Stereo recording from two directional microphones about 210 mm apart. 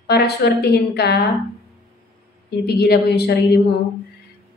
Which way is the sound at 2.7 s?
50° left (ahead or behind).